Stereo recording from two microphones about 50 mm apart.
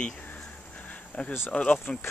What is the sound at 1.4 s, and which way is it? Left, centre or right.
Speech, left.